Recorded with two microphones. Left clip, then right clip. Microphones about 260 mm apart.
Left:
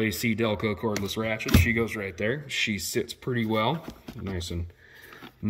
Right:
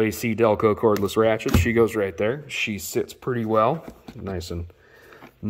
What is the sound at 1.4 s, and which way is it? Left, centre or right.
Speech, centre.